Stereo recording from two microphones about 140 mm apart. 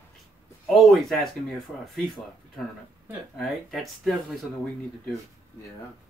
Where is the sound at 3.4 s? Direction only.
Centre (ahead or behind).